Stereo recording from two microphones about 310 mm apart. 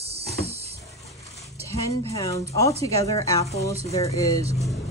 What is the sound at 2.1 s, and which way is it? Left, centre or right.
A woman's voice, centre.